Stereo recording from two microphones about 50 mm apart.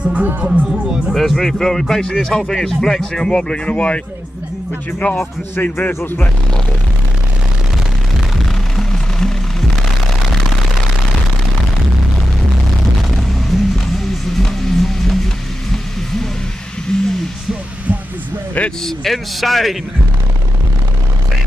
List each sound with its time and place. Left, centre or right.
0.0 s speech: right
0.7 s speech: centre
1.1 s speech: centre; by 4.0 s left
5.6 s a man's voice: left
8.7 s music: centre
13.1 s music: centre
16.9 s a sound: centre
18.9 s a man's voice: centre